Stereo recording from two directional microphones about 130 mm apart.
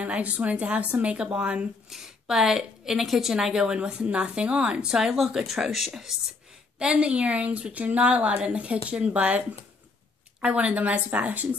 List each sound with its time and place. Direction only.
0.0 s a woman's voice: 10° right (ahead or behind)
10.4 s a woman's voice: 10° right (ahead or behind)